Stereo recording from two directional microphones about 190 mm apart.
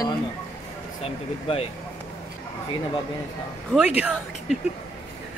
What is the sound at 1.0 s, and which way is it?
Speech, 30° left (ahead or behind).